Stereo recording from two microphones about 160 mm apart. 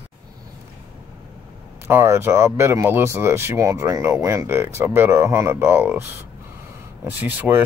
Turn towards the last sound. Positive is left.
turn(degrees=-10)  # may be behind; listen again after turning